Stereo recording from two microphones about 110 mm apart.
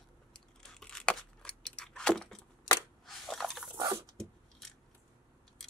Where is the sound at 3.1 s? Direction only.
5° left (ahead or behind).